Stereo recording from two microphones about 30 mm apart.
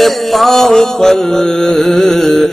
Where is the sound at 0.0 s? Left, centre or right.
Centre.